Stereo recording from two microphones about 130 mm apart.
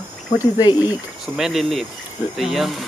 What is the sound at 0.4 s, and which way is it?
Speech, 35° left (ahead or behind).